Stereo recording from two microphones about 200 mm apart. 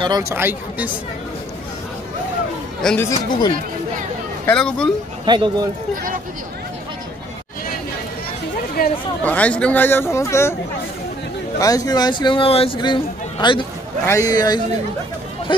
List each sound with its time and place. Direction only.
0.0 s speech: 15° right (ahead or behind)
2.8 s speech: 5° left (ahead or behind)
4.5 s speech: 5° left (ahead or behind)
5.2 s a man's voice: 20° right (ahead or behind)
8.8 s speech: 50° left (ahead or behind)
9.2 s speech: 5° left (ahead or behind)
11.6 s speech: 20° left (ahead or behind)